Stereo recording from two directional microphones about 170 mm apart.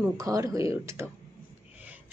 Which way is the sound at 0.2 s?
20° right (ahead or behind).